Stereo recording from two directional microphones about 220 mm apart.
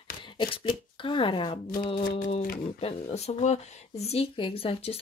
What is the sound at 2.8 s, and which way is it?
Speech, 30° left (ahead or behind).